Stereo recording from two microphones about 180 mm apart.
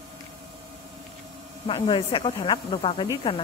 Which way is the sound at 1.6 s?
25° left (ahead or behind).